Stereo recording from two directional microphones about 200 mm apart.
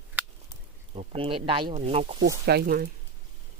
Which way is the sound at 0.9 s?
30° right (ahead or behind).